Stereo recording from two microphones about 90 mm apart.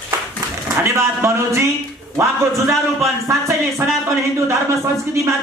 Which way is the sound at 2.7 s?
35° right (ahead or behind).